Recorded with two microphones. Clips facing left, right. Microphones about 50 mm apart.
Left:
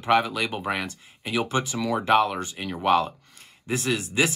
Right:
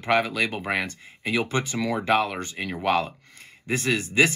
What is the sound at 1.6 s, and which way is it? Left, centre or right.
Speech, right.